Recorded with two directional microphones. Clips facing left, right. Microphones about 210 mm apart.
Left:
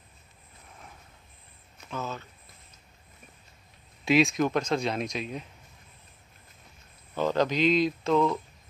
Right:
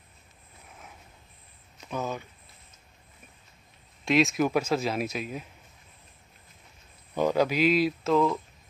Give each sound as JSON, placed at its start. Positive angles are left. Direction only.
{"t": 1.9, "sound": "speech", "side_deg": -15}
{"t": 4.0, "sound": "a man's voice", "side_deg": 0}
{"t": 7.2, "sound": "a man's voice", "side_deg": -10}